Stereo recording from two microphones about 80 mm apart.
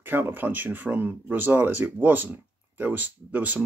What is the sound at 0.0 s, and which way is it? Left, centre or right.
Speech, right.